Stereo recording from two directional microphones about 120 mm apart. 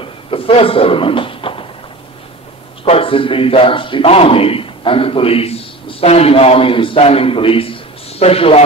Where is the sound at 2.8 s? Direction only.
50° left (ahead or behind).